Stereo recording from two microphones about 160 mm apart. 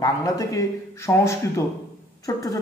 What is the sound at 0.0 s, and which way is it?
Speech, 20° left (ahead or behind).